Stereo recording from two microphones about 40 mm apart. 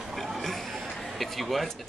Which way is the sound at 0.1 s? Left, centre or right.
Centre.